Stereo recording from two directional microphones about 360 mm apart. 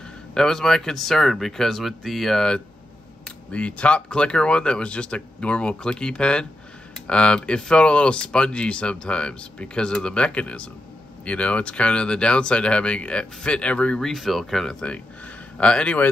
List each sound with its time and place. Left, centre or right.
0.3 s speech: centre